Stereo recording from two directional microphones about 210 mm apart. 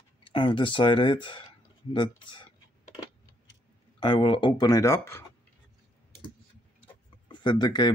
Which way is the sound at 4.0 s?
20° left (ahead or behind).